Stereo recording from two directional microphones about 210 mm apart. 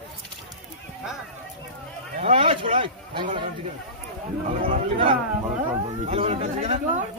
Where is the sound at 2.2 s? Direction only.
30° right (ahead or behind).